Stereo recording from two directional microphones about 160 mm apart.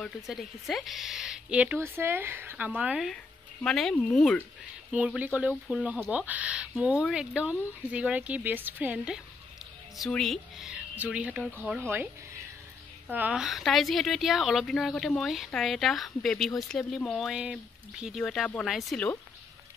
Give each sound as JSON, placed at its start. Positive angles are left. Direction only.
{"t": 0.0, "sound": "a woman's voice", "side_deg": 0}
{"t": 4.9, "sound": "a woman's voice", "side_deg": -10}
{"t": 13.1, "sound": "a woman's voice", "side_deg": -10}